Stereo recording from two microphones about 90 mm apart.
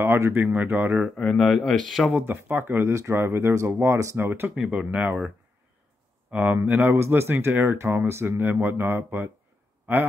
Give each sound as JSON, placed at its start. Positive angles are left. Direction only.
{"t": 0.0, "sound": "speech", "side_deg": -25}
{"t": 1.1, "sound": "speech", "side_deg": 10}
{"t": 2.2, "sound": "speech", "side_deg": -20}
{"t": 4.6, "sound": "speech", "side_deg": -10}
{"t": 6.5, "sound": "speech", "side_deg": -20}